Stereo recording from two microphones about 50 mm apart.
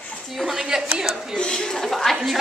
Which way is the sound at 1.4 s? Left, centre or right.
Centre.